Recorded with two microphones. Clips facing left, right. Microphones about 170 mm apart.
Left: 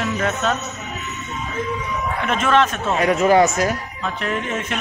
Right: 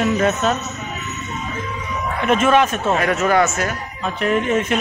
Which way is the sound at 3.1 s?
30° left (ahead or behind).